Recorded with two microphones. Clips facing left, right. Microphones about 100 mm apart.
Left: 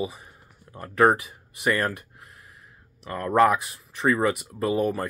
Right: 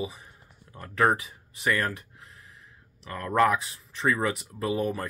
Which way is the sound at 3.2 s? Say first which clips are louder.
Left 3 dB; 10° left (ahead or behind).